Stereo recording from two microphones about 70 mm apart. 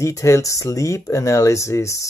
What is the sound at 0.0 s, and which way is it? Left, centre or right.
Speech, left.